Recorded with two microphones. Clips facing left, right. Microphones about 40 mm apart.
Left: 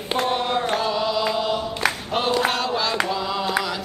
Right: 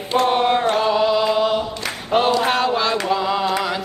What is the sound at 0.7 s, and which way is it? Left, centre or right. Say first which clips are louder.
Chant: right 5 dB; centre.